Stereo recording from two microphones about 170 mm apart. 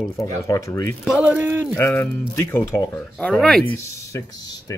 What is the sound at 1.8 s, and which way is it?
Speech, 15° left (ahead or behind).